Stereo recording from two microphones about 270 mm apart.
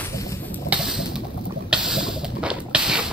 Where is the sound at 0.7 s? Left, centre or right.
Centre.